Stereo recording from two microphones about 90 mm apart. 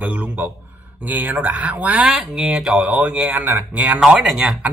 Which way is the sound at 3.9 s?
5° right (ahead or behind).